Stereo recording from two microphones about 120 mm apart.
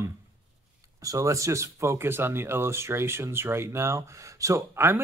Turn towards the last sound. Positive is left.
turn(degrees=-20)  # may be behind; listen again after turning